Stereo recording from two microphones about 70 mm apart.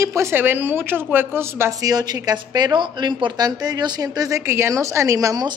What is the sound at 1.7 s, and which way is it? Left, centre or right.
A woman's voice, right.